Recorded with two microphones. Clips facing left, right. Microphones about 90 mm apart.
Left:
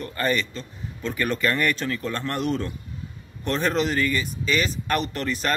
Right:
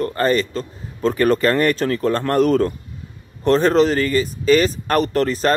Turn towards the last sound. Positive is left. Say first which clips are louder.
# right 9 dB
turn(degrees=-40)  # may be behind; listen again after turning